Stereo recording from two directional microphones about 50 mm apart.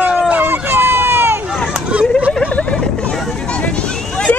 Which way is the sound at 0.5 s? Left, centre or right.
Right.